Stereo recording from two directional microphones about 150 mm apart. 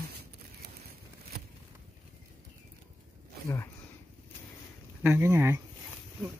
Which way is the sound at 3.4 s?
20° left (ahead or behind).